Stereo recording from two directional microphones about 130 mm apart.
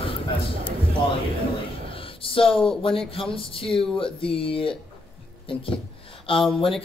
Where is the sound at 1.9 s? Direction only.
45° left (ahead or behind).